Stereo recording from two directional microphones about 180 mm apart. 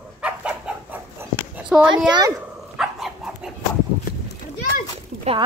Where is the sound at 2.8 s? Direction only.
Centre (ahead or behind).